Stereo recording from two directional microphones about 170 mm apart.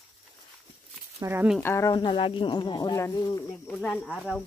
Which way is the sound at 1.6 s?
15° left (ahead or behind).